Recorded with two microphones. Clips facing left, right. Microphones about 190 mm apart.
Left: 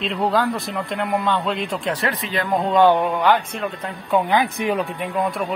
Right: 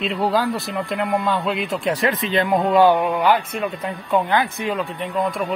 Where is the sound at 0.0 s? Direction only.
Centre (ahead or behind).